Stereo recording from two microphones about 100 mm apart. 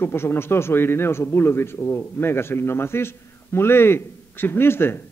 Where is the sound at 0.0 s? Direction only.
25° left (ahead or behind).